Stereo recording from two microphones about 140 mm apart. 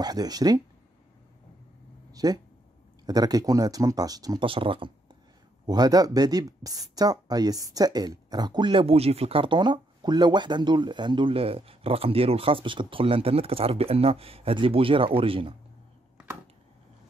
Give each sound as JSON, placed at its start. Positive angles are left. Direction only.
{"t": 0.0, "sound": "speech", "side_deg": -30}
{"t": 2.1, "sound": "speech", "side_deg": -30}
{"t": 4.5, "sound": "speech", "side_deg": -40}
{"t": 5.7, "sound": "speech", "side_deg": -25}